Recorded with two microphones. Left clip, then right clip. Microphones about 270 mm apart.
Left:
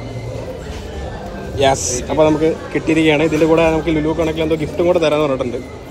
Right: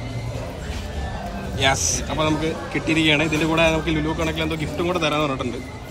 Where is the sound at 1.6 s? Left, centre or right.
Centre.